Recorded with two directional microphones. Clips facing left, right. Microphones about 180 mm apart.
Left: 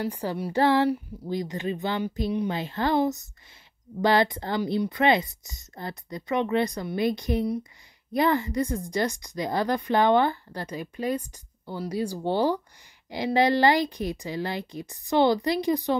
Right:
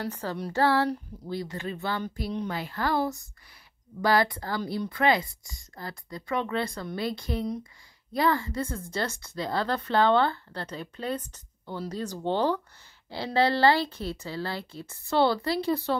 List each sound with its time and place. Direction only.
0.0 s speech: 15° left (ahead or behind)